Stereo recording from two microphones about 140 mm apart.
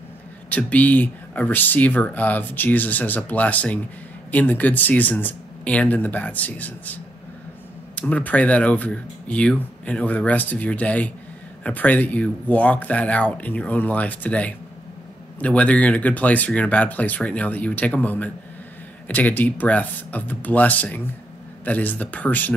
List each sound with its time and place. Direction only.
0.5 s speech: 10° left (ahead or behind)
8.0 s speech: 10° left (ahead or behind)